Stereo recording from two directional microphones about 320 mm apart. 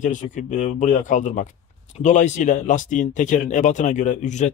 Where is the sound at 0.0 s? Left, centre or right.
Left.